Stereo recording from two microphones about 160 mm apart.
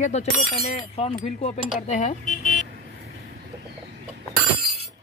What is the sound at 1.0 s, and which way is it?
Cutlery, 40° left (ahead or behind).